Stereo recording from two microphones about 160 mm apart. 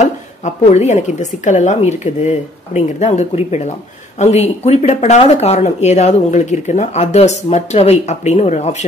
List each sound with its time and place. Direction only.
0.0 s speech: 45° left (ahead or behind)